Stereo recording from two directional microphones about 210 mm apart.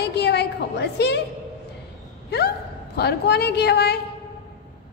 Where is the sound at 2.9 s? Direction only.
50° left (ahead or behind).